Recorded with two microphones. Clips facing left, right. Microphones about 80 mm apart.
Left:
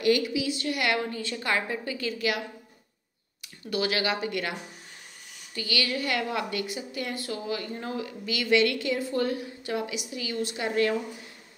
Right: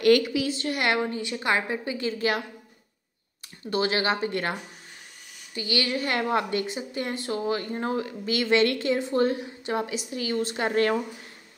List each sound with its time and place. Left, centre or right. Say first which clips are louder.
0.0 s a woman's voice: right 4 dB; right
0.5 s a woman's voice: right 2 dB; right
3.7 s a woman's voice: right 3 dB; right